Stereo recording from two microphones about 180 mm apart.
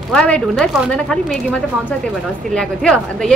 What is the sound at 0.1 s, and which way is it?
Speech, 5° left (ahead or behind).